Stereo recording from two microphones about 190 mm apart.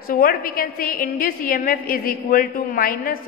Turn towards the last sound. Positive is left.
turn(degrees=50)  # may be behind; listen again after turning